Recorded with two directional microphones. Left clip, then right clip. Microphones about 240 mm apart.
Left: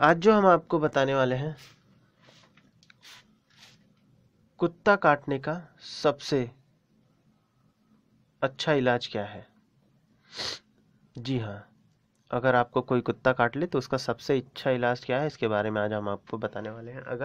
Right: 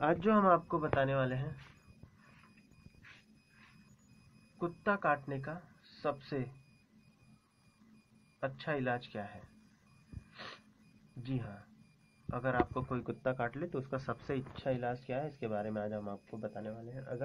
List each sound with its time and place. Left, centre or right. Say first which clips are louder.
0.0 s speech: left 10 dB; left
4.6 s speech: left 12 dB; left
8.4 s speech: left 12 dB; left